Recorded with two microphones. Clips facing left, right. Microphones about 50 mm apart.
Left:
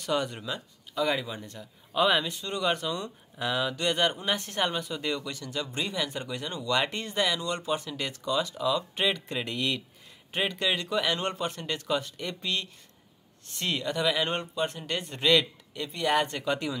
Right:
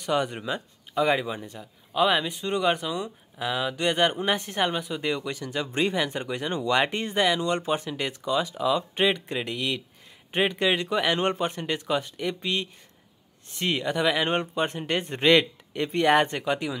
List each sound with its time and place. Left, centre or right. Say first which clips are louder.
0.0 s speech: right 3 dB; centre
2.2 s a man's voice: right 4 dB; centre
9.5 s speech: left 1 dB; centre
10.3 s a man's voice: right 5 dB; right
16.3 s speech: right 2 dB; centre